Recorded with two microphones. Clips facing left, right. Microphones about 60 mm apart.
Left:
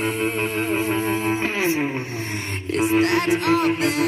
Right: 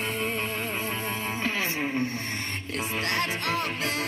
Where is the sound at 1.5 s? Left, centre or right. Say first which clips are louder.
Left 6 dB; centre.